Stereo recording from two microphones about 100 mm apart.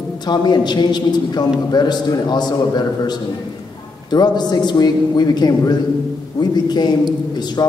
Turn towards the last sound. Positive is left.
turn(degrees=45)  # may be behind; listen again after turning